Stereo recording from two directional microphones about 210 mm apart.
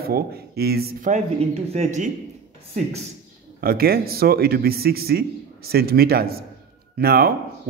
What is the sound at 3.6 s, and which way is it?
Speech, 45° right (ahead or behind).